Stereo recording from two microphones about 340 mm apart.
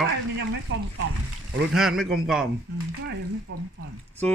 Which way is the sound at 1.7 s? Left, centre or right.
Centre.